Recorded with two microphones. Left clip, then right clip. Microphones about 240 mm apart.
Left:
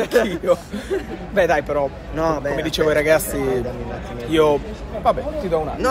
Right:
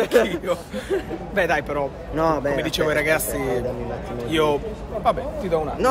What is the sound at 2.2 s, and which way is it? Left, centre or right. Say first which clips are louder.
Speech: even; right.